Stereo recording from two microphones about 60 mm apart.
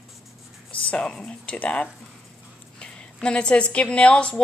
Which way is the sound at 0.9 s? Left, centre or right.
Centre.